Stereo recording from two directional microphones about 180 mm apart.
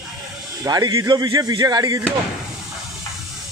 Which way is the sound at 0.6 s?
20° right (ahead or behind).